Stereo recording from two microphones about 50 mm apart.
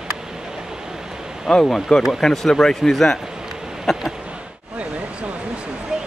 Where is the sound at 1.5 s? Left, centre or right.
Centre.